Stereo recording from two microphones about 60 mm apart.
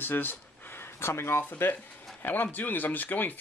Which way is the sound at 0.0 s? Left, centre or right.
Left.